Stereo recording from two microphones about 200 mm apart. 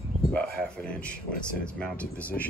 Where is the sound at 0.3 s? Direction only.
5° left (ahead or behind).